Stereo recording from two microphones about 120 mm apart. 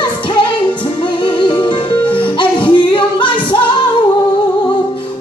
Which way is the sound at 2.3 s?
40° left (ahead or behind).